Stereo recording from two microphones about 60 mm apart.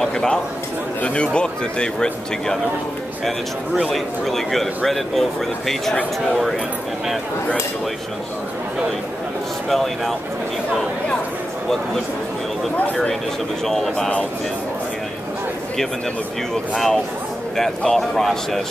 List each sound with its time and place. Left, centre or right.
0.0 s a man's voice: centre
3.9 s speech: centre
9.7 s speech: centre
12.7 s speech: left
13.7 s speech: centre
16.7 s speech: centre